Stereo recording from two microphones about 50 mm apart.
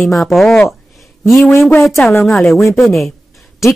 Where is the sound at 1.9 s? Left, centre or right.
Centre.